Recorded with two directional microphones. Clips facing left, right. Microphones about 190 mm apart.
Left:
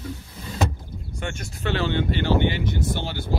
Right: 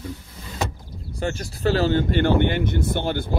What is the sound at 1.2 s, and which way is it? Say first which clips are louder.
Speech: right 6 dB; 35° right (ahead or behind).